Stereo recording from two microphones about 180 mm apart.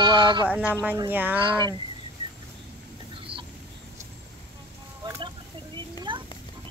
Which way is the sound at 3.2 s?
30° right (ahead or behind).